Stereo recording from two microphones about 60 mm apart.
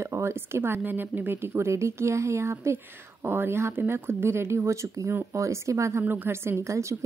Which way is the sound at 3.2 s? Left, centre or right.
Right.